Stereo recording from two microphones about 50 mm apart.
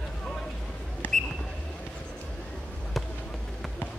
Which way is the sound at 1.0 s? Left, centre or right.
Left.